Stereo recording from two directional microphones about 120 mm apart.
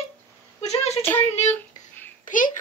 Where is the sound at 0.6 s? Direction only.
65° left (ahead or behind).